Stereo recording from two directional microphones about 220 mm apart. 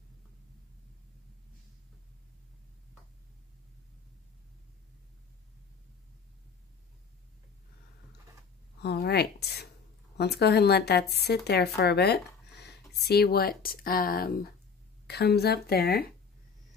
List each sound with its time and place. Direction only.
8.8 s speech: 45° left (ahead or behind)